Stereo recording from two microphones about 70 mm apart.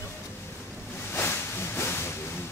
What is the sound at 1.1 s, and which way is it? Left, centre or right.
Hiss, left.